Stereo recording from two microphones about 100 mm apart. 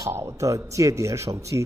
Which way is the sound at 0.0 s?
25° right (ahead or behind).